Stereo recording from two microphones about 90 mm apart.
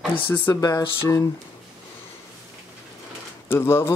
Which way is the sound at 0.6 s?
45° left (ahead or behind).